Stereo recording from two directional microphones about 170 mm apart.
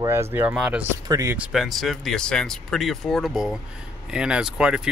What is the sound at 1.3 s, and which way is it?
Speech, 5° right (ahead or behind).